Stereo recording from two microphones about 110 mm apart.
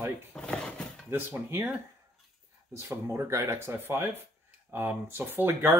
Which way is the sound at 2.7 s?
25° right (ahead or behind).